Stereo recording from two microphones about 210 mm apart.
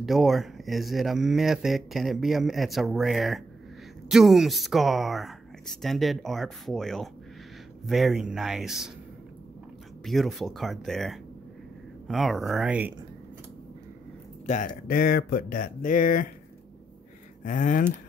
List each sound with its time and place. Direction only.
0.0 s speech: centre (ahead or behind)
10.0 s speech: centre (ahead or behind)
14.4 s speech: 35° left (ahead or behind)
14.9 s speech: 45° left (ahead or behind)
17.4 s speech: 35° left (ahead or behind)